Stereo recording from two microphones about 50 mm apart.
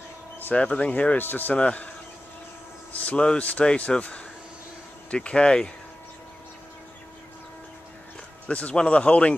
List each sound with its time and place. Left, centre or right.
0.6 s speech: left
1.1 s speech: left
1.5 s speech: left
2.9 s speech: left
8.5 s speech: left